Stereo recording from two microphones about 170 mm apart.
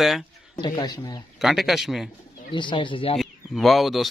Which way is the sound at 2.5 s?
30° left (ahead or behind).